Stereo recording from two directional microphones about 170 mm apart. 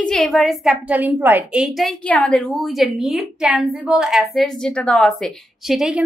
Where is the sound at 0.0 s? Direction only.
5° left (ahead or behind).